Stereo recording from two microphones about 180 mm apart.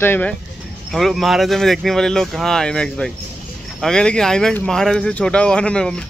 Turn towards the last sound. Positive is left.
turn(degrees=5)  # may be behind; listen again after turning